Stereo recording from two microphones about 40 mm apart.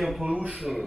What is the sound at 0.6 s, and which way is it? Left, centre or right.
Speech, centre.